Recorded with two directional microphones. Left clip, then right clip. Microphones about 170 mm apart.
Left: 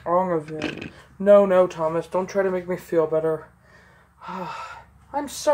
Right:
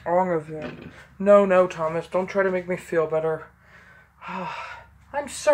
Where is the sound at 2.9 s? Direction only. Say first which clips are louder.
Left 2 dB; 20° right (ahead or behind).